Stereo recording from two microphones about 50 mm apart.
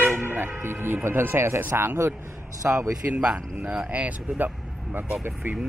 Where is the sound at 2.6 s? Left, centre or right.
Right.